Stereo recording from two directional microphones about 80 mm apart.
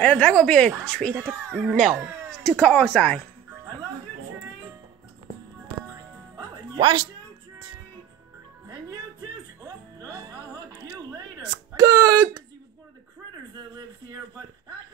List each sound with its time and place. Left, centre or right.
0.0 s speech: centre
1.1 s speech: right
1.7 s speech: centre
2.4 s speech: centre
6.3 s music: right
9.9 s music: right
11.3 s a sound: right